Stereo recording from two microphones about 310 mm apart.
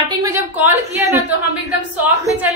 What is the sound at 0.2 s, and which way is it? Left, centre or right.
A woman's voice, centre.